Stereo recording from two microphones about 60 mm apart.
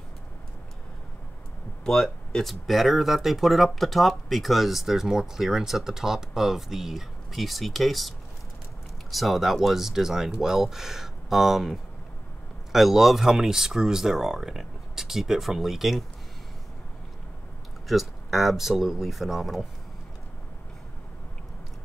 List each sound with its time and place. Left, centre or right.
1.9 s speech: centre
9.1 s speech: centre
17.8 s speech: centre